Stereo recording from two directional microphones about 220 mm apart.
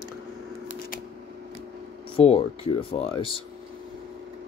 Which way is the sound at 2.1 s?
25° left (ahead or behind).